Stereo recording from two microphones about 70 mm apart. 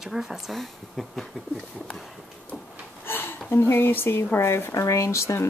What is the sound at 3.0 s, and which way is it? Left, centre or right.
A woman's voice, left.